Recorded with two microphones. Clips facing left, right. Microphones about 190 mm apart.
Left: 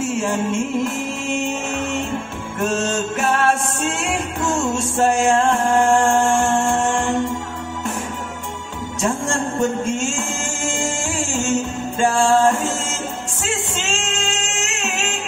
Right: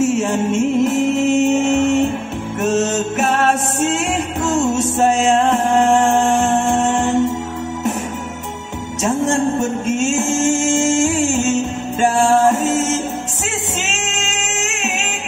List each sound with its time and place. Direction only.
0.0 s music: 20° right (ahead or behind)
9.0 s music: 20° right (ahead or behind)